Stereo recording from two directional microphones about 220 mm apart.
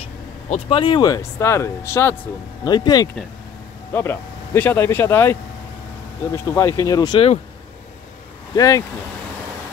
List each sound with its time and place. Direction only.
0.5 s speech: 25° left (ahead or behind)
8.5 s speech: 15° left (ahead or behind)